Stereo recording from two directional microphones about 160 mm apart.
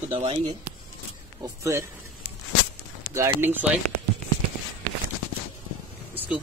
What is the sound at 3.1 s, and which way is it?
Speech, 15° right (ahead or behind).